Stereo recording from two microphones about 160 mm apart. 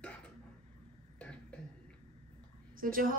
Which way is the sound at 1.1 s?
5° left (ahead or behind).